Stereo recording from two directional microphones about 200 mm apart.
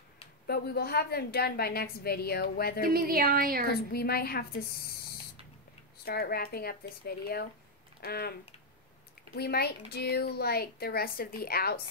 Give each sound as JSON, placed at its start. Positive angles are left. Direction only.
{"t": 0.5, "sound": "a woman's voice", "side_deg": 50}
{"t": 2.8, "sound": "speech", "side_deg": -45}
{"t": 3.9, "sound": "a woman's voice", "side_deg": 50}
{"t": 6.0, "sound": "a woman's voice", "side_deg": 50}